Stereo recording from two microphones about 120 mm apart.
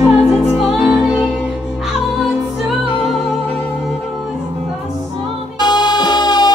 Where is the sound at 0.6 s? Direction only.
10° right (ahead or behind).